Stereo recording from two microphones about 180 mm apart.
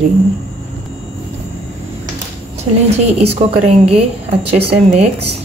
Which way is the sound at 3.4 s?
35° right (ahead or behind).